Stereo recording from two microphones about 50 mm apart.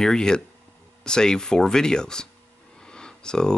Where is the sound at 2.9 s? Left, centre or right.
Centre.